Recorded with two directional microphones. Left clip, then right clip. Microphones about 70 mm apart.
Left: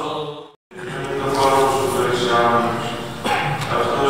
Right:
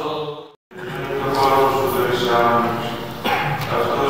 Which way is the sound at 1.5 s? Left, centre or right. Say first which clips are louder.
Even; left.